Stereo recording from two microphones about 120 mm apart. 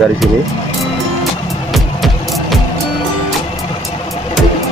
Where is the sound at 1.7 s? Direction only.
Centre (ahead or behind).